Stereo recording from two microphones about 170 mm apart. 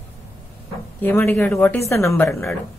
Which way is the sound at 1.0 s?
10° left (ahead or behind).